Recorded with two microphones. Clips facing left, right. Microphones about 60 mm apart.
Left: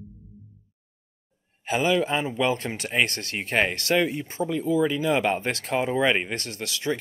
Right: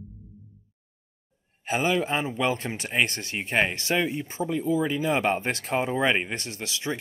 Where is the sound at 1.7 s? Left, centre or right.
Right.